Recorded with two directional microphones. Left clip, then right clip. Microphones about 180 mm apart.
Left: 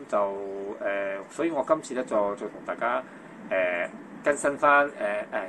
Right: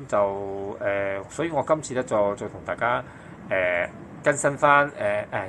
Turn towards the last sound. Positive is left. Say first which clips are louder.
# right 3 dB
turn(degrees=-30)  # may be behind; listen again after turning